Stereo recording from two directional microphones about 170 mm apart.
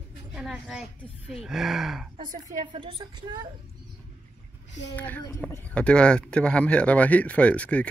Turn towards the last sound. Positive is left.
turn(degrees=10)  # may be behind; listen again after turning